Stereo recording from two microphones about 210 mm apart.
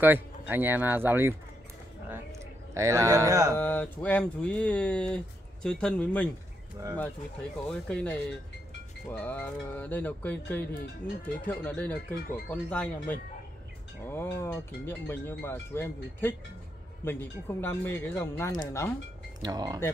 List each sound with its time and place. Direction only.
0.0 s speech: 10° right (ahead or behind)
2.7 s speech: 15° right (ahead or behind)
3.5 s speech: 10° left (ahead or behind)
7.6 s speech: 5° left (ahead or behind)
19.4 s speech: 20° right (ahead or behind)